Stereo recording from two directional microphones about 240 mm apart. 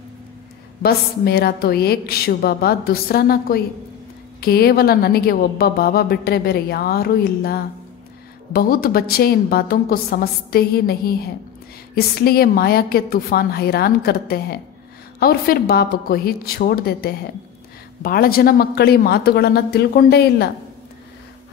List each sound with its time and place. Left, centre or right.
0.8 s a woman's voice: left